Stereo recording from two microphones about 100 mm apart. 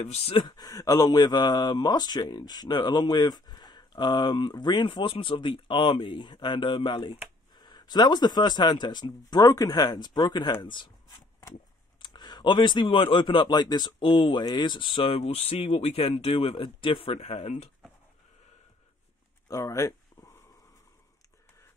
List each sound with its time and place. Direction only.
0.0 s speech: 90° left
0.4 s speech: 45° left (ahead or behind)
7.5 s speech: 45° left (ahead or behind)
12.0 s a sound: 45° left (ahead or behind)
12.8 s speech: 60° left (ahead or behind); by 13.9 s 45° left (ahead or behind)
13.9 s speech: 60° left (ahead or behind)
14.4 s speech: 50° left (ahead or behind); by 17.6 s 90° left
19.4 s a sound: 30° left (ahead or behind)